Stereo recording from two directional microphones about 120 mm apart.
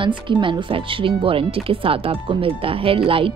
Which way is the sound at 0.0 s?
45° right (ahead or behind).